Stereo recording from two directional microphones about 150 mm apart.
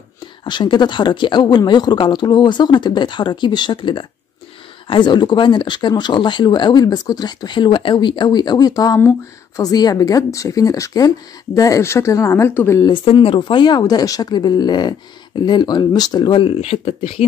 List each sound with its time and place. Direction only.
0.4 s speech: 30° left (ahead or behind)
12.8 s speech: 35° left (ahead or behind)